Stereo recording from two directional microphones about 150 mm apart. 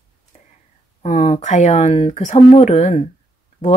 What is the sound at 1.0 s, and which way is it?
Speech, 50° left (ahead or behind).